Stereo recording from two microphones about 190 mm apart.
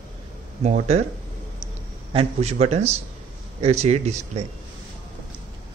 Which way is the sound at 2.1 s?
35° right (ahead or behind).